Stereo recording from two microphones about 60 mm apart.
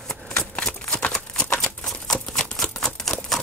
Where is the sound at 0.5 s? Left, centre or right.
Centre.